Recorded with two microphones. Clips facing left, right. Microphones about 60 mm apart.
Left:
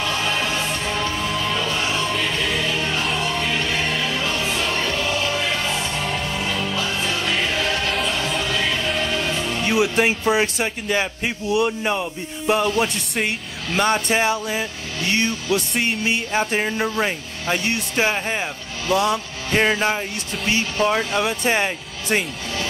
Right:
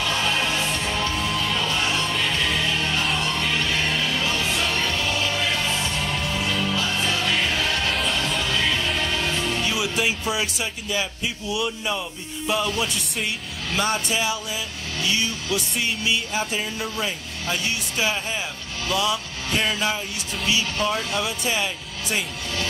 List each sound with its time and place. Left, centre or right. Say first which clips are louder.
0.1 s music: left 1 dB; centre
9.6 s speech: left 6 dB; left
18.9 s music: left 5 dB; left
20.4 s speech: left 3 dB; left